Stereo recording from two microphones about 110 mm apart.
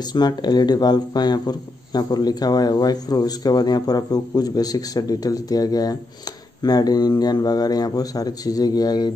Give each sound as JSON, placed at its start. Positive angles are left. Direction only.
{"t": 0.1, "sound": "a man's voice", "side_deg": 40}